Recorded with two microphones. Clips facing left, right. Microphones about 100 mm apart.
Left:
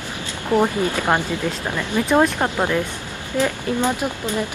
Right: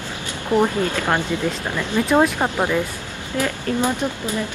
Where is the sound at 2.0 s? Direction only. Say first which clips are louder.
Even; centre (ahead or behind).